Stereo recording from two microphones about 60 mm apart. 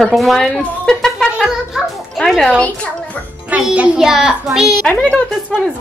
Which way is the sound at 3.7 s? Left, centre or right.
Right.